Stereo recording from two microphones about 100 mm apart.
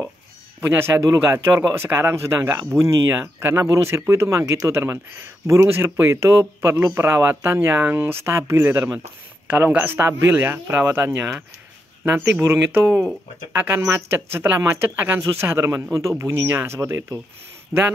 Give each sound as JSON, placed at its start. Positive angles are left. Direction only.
{"t": 0.6, "sound": "speech", "side_deg": -25}
{"t": 17.7, "sound": "speech", "side_deg": -5}